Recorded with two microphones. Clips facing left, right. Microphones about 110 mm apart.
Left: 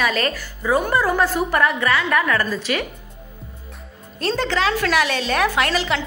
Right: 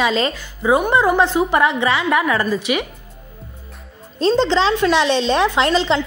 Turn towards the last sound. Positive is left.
turn(degrees=-25)  # may be behind; listen again after turning